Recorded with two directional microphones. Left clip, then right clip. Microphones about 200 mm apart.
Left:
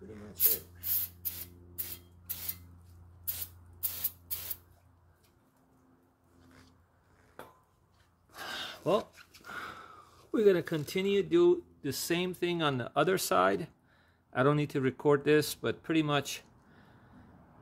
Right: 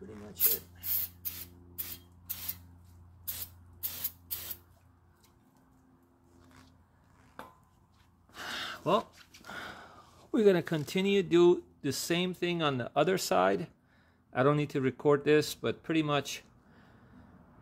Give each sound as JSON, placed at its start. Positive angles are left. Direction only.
{"t": 4.3, "sound": "spray", "side_deg": -15}
{"t": 8.3, "sound": "a sound", "side_deg": -20}
{"t": 10.3, "sound": "speech", "side_deg": -25}
{"t": 11.9, "sound": "speech", "side_deg": -10}